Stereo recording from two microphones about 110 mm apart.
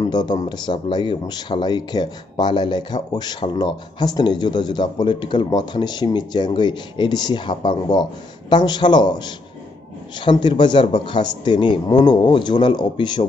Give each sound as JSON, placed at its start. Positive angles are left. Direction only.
{"t": 0.0, "sound": "a man's voice", "side_deg": 40}